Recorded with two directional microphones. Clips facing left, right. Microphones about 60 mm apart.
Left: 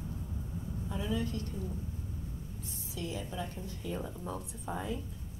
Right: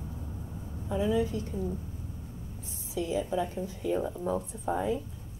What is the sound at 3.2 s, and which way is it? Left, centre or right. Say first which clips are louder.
Speech: right 13 dB; right.